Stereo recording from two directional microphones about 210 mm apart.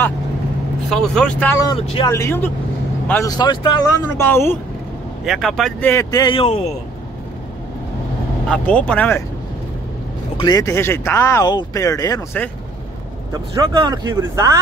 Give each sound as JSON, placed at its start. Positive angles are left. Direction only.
{"t": 0.8, "sound": "speech", "side_deg": 0}
{"t": 1.8, "sound": "speech", "side_deg": 30}
{"t": 2.0, "sound": "speech", "side_deg": 15}
{"t": 5.2, "sound": "speech", "side_deg": 0}
{"t": 8.5, "sound": "speech", "side_deg": 5}
{"t": 10.3, "sound": "speech", "side_deg": 20}
{"t": 13.3, "sound": "speech", "side_deg": -20}